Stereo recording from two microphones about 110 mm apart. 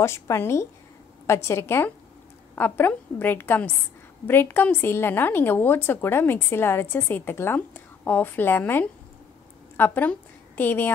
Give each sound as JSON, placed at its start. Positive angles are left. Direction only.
{"t": 0.0, "sound": "a woman's voice", "side_deg": 25}